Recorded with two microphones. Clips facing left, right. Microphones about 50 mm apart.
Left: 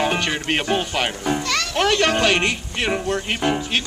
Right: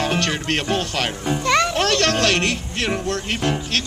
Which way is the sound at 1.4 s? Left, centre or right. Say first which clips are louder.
Right 6 dB; right.